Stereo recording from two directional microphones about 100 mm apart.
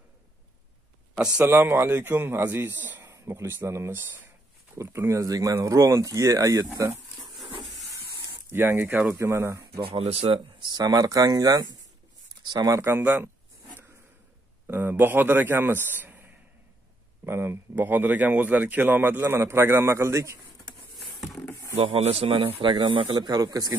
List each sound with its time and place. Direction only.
1.4 s speech: 25° right (ahead or behind)
3.0 s speech: 30° right (ahead or behind)
8.5 s speech: 20° right (ahead or behind)
9.8 s speech: 90° right
10.6 s speech: 45° right (ahead or behind); by 13.3 s 20° right (ahead or behind)
14.7 s a man's voice: 20° right (ahead or behind)
17.3 s speech: 25° right (ahead or behind)
21.7 s a man's voice: 65° right (ahead or behind)
23.1 s speech: 40° right (ahead or behind)